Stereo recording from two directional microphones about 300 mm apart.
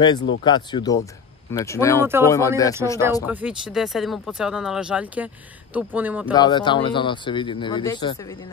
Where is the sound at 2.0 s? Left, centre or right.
Centre.